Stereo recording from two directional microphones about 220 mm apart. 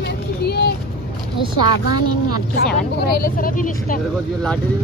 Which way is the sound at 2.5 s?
45° left (ahead or behind).